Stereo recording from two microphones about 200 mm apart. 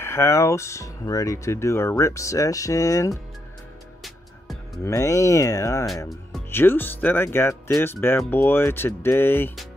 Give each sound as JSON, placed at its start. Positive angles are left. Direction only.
{"t": 0.0, "sound": "speech", "side_deg": 10}
{"t": 4.8, "sound": "speech", "side_deg": 15}